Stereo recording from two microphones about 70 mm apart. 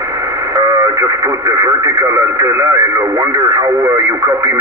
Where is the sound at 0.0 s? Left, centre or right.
Right.